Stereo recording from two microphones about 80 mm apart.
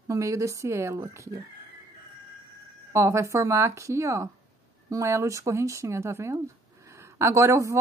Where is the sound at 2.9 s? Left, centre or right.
Right.